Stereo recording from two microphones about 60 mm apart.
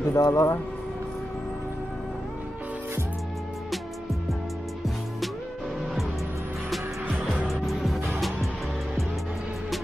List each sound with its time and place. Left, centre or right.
0.0 s speech: left
3.7 s music: centre
7.2 s music: centre